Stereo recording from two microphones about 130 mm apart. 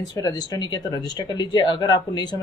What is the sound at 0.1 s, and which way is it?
Speech, 30° left (ahead or behind).